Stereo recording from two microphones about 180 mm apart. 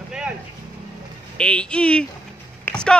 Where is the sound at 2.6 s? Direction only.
5° left (ahead or behind).